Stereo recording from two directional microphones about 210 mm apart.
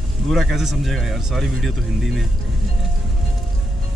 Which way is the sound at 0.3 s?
Centre (ahead or behind).